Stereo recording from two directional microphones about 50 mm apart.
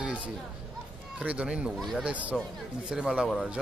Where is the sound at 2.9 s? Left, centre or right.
Centre.